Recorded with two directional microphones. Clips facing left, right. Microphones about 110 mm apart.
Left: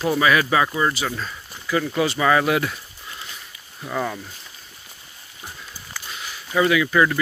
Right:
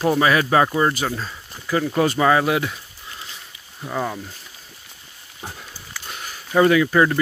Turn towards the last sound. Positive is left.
turn(degrees=-35)  # may be behind; listen again after turning